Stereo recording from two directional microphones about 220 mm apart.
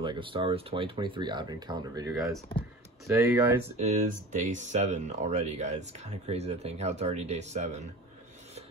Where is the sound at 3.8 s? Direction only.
35° right (ahead or behind).